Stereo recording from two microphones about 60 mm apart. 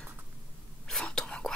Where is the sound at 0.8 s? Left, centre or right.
Centre.